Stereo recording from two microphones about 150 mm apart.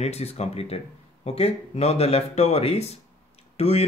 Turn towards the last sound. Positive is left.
turn(degrees=45)  # may be behind; listen again after turning